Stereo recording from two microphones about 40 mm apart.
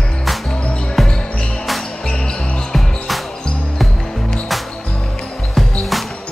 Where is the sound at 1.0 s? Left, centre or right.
Centre.